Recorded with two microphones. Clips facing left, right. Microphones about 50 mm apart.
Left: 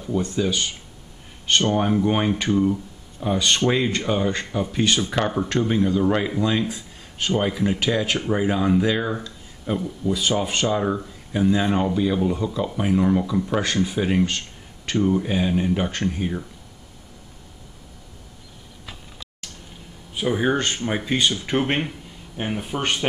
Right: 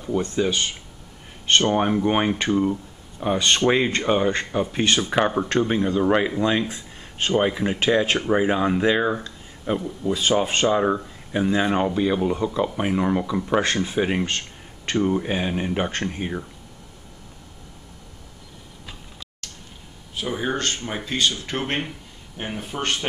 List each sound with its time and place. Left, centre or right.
0.4 s speech: right
5.1 s speech: centre
6.7 s a sound: right
7.3 s speech: right
10.1 s speech: right
10.7 s speech: centre
20.2 s speech: centre